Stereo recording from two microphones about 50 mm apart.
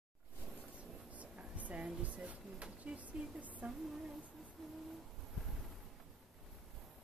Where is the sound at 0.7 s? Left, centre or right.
Right.